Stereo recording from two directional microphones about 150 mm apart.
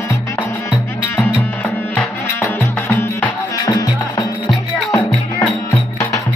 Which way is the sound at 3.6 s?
25° left (ahead or behind).